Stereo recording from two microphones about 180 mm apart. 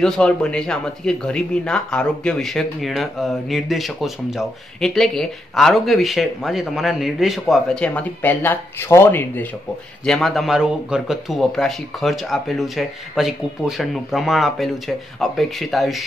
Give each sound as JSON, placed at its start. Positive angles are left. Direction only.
{"t": 0.0, "sound": "speech", "side_deg": 5}